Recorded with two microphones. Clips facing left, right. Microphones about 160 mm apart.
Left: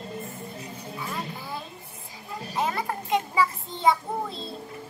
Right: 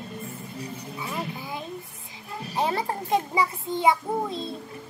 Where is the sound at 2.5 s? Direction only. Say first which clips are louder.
Right 2 dB; 30° right (ahead or behind).